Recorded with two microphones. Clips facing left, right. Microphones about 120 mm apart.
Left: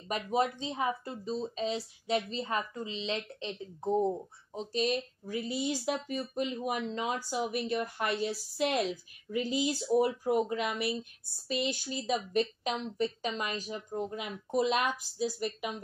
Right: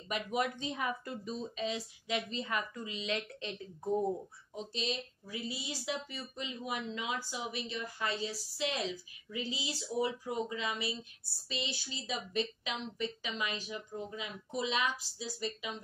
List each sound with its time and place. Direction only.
0.1 s speech: 30° left (ahead or behind)
4.7 s a woman's voice: 50° left (ahead or behind)
6.9 s a woman's voice: 40° left (ahead or behind)